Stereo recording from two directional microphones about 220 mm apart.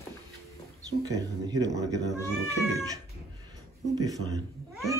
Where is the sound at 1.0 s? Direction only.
15° right (ahead or behind).